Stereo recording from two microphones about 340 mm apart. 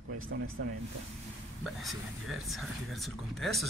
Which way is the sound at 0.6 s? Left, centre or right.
Right.